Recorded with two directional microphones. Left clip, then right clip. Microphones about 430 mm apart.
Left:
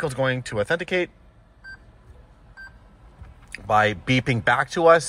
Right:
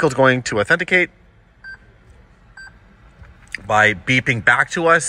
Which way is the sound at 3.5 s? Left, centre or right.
Centre.